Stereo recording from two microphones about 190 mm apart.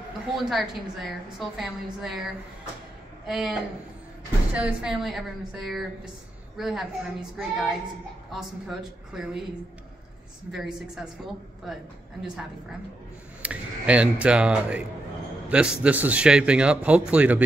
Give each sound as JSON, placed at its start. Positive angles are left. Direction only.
{"t": 0.5, "sound": "a man's voice", "side_deg": 0}
{"t": 3.3, "sound": "a man's voice", "side_deg": 0}
{"t": 4.6, "sound": "a man's voice", "side_deg": -5}
{"t": 10.5, "sound": "a man's voice", "side_deg": 0}